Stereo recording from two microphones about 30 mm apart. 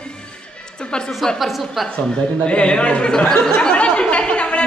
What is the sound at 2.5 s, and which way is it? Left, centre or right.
Speech, left.